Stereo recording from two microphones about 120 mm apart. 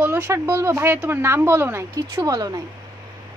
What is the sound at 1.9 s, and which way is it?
Speech, 30° right (ahead or behind).